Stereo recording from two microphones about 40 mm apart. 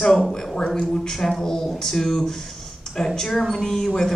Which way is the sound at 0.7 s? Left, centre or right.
Centre.